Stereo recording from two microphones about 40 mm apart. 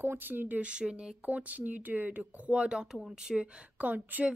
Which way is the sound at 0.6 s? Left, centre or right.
Right.